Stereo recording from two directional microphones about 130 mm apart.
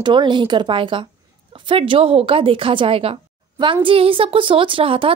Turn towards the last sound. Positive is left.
turn(degrees=-45)  # may be behind; listen again after turning